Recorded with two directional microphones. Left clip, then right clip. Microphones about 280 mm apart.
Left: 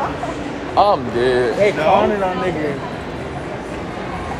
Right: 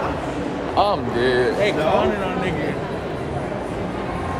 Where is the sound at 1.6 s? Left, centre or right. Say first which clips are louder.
Left 4 dB; centre.